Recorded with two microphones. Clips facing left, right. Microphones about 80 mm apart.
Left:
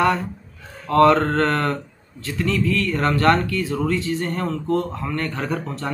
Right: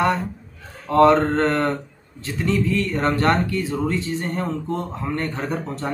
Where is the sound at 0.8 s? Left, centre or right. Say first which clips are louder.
Even; right.